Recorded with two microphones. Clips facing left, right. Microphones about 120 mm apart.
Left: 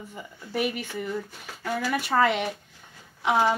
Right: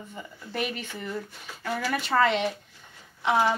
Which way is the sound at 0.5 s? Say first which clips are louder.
Left 4 dB; 10° left (ahead or behind).